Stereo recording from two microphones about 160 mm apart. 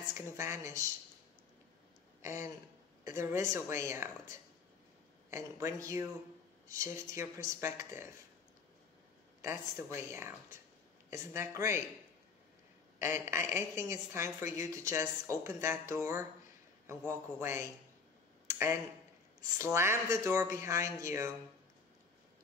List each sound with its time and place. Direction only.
0.1 s a woman's voice: 15° right (ahead or behind)
2.2 s a woman's voice: 15° right (ahead or behind)
9.4 s a woman's voice: 15° right (ahead or behind)
13.0 s a woman's voice: 15° right (ahead or behind)
18.5 s a sound: 15° right (ahead or behind)
19.6 s a woman's voice: 15° right (ahead or behind)